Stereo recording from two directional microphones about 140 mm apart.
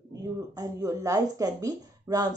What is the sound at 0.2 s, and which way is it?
Speech, 25° right (ahead or behind).